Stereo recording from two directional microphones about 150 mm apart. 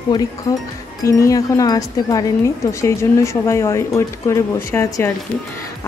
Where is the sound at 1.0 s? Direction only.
20° left (ahead or behind).